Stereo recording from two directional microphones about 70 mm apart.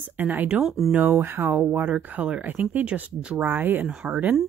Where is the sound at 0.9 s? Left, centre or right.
Right.